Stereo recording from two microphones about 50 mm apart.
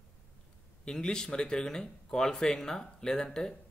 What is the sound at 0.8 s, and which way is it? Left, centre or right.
Speech, centre.